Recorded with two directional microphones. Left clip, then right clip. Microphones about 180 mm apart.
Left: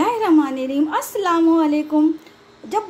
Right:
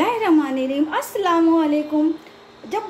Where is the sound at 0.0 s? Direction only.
30° left (ahead or behind).